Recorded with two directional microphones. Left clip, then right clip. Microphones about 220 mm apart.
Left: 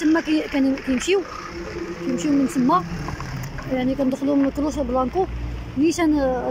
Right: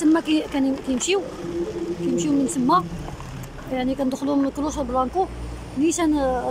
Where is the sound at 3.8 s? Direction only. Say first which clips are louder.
Left 1 dB; centre (ahead or behind).